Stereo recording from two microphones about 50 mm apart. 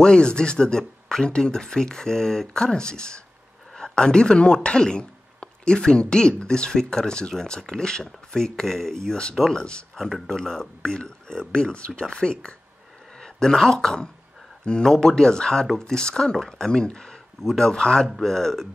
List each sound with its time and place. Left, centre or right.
0.0 s speech: centre
9.9 s speech: centre